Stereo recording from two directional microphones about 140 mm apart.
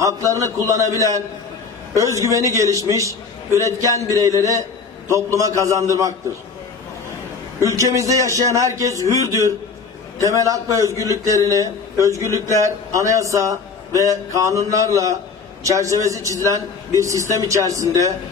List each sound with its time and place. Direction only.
0.0 s a man's voice: 20° right (ahead or behind)
7.6 s a man's voice: 25° right (ahead or behind)
10.9 s speech: 20° left (ahead or behind)
11.2 s a man's voice: 25° right (ahead or behind)